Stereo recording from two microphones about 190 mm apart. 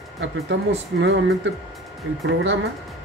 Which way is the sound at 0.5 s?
75° right (ahead or behind).